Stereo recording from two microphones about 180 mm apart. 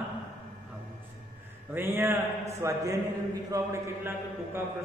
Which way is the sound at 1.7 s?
15° right (ahead or behind).